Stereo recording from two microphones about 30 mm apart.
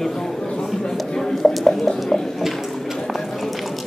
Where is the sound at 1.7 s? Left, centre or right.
Centre.